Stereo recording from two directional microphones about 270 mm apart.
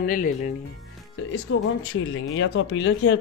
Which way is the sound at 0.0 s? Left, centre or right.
Left.